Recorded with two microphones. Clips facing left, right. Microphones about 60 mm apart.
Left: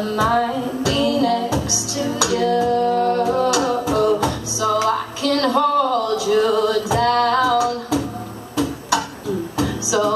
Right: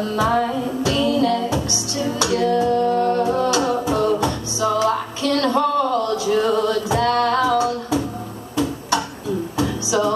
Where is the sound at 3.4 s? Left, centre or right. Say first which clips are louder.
Left 1 dB; right.